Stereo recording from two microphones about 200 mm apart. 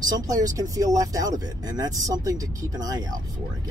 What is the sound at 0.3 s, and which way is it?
Speech, 15° right (ahead or behind).